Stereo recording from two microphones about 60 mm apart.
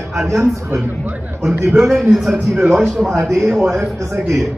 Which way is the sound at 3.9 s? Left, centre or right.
Right.